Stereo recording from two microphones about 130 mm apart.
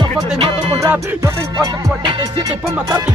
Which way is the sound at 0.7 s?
25° right (ahead or behind).